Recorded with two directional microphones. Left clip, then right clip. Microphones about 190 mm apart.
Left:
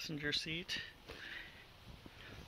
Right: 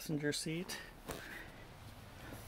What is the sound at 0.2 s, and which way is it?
Speech, 5° left (ahead or behind).